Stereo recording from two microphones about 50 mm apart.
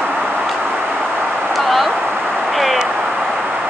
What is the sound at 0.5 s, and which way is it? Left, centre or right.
Vehicle, right.